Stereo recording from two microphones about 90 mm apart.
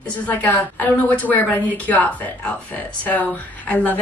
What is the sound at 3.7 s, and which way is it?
Speech, 15° left (ahead or behind).